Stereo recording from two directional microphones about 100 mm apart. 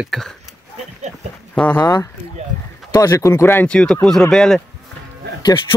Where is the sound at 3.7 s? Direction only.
10° left (ahead or behind).